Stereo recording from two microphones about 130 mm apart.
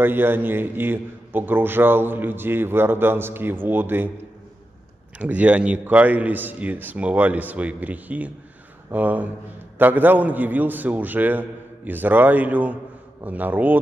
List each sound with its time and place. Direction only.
0.0 s a man's voice: 15° right (ahead or behind)
5.2 s a man's voice: 10° right (ahead or behind)